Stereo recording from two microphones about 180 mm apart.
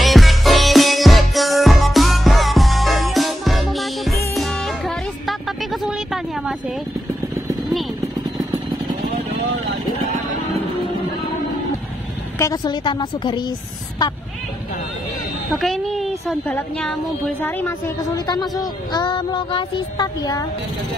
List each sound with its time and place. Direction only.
0.0 s music: centre (ahead or behind)
12.4 s a sound: 20° left (ahead or behind)
15.5 s a woman's voice: centre (ahead or behind); by 20.4 s 20° left (ahead or behind)